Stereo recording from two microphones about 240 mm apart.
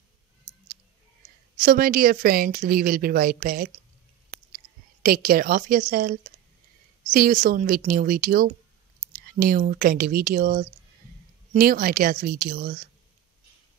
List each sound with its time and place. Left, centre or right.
1.6 s a woman's voice: right
5.0 s a woman's voice: right